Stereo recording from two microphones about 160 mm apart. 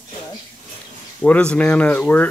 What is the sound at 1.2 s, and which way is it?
Speech, 5° left (ahead or behind).